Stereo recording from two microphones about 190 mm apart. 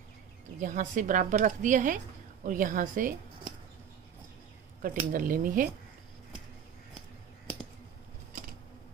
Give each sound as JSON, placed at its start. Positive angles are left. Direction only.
{"t": 0.6, "sound": "a woman's voice", "side_deg": -45}
{"t": 4.8, "sound": "a woman's voice", "side_deg": -45}